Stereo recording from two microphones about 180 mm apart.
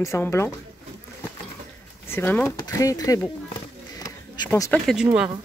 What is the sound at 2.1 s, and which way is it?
Speech, 10° left (ahead or behind).